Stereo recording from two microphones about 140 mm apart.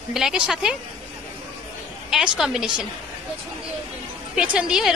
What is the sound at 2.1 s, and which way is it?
Speech, 5° right (ahead or behind).